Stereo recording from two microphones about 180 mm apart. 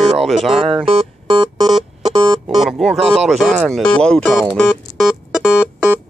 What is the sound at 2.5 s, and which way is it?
Speech, centre (ahead or behind).